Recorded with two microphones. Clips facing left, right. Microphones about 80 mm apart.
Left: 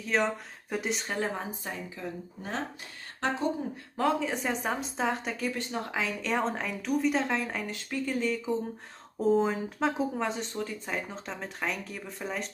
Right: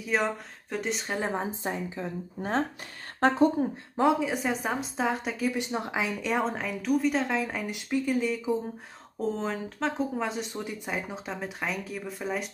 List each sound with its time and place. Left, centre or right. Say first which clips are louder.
0.0 s speech: even; centre
1.2 s a woman's voice: right 3 dB; right
3.2 s a woman's voice: right 8 dB; right
4.2 s speech: right 2 dB; centre
5.6 s speech: right 2 dB; centre
9.2 s speech: left 5 dB; centre